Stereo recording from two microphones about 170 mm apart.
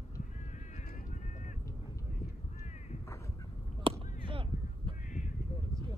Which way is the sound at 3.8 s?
30° right (ahead or behind).